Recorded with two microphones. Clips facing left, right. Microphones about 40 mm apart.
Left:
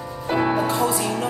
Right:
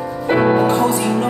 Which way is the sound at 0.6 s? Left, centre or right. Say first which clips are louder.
Right 6 dB; right.